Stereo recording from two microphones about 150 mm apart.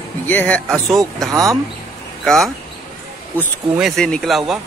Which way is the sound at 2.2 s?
Centre (ahead or behind).